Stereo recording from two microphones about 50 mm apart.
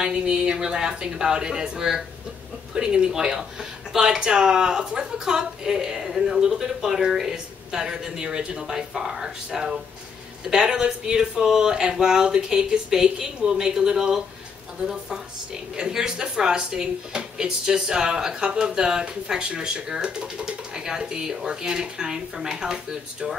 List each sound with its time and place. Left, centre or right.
0.0 s a woman's voice: centre